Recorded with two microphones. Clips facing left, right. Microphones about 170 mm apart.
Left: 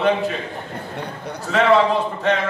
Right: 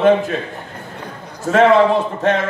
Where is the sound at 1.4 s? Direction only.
45° right (ahead or behind).